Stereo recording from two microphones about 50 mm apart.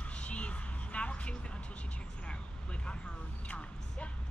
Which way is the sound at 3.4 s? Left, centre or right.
Left.